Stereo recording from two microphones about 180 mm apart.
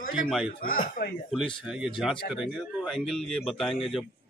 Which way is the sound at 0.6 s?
50° left (ahead or behind).